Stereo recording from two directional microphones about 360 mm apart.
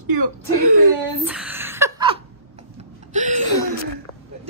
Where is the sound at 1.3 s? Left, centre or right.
Centre.